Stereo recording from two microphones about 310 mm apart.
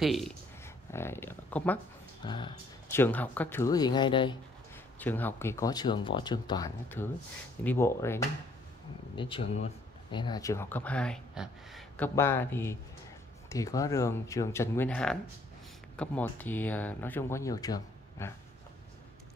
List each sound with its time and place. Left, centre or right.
0.0 s speech: centre